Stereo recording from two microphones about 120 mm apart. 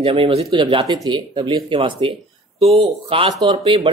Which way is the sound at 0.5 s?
40° right (ahead or behind).